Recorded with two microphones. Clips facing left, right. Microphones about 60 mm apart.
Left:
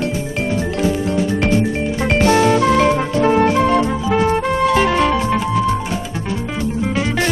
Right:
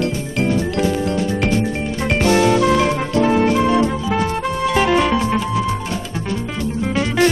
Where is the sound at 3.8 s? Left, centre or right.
Centre.